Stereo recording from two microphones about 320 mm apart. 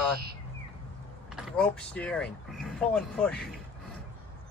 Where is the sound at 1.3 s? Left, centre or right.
Centre.